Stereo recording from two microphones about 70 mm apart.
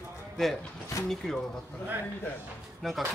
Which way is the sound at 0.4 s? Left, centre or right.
Centre.